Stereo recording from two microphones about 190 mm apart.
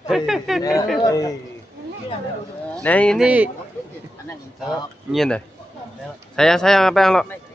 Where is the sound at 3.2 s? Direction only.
5° right (ahead or behind).